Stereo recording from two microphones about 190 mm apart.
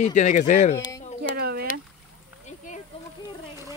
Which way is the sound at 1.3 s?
55° right (ahead or behind).